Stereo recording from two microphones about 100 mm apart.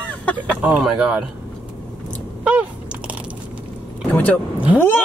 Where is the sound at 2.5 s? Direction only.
10° right (ahead or behind).